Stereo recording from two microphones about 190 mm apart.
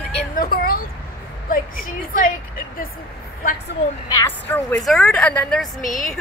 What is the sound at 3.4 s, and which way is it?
Speech, 50° left (ahead or behind).